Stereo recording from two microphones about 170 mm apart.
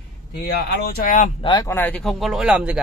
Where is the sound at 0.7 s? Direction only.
65° left (ahead or behind).